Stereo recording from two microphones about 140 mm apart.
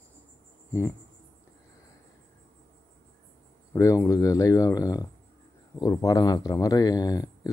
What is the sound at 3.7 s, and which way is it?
Speech, 25° left (ahead or behind).